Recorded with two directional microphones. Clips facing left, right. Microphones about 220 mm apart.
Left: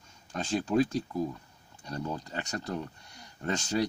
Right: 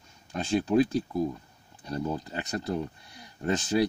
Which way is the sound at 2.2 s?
5° right (ahead or behind).